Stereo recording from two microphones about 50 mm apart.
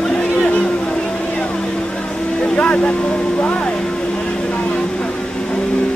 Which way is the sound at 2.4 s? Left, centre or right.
Left.